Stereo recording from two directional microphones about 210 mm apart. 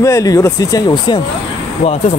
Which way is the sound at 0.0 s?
15° left (ahead or behind).